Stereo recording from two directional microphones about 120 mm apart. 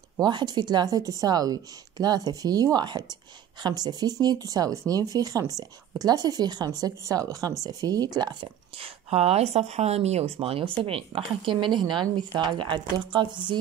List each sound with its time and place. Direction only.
0.2 s speech: 35° right (ahead or behind)
8.7 s speech: 55° right (ahead or behind)